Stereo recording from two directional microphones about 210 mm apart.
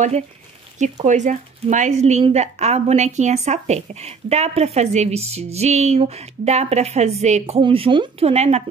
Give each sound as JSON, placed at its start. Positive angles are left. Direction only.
{"t": 1.0, "sound": "a woman's voice", "side_deg": -35}